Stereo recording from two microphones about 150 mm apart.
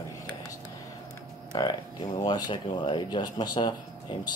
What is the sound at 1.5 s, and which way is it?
Speech, 25° left (ahead or behind).